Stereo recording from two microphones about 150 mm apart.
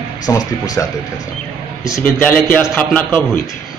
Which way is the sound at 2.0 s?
10° left (ahead or behind).